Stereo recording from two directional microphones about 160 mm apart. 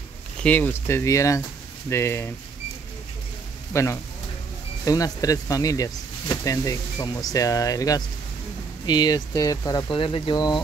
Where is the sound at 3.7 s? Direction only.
20° left (ahead or behind).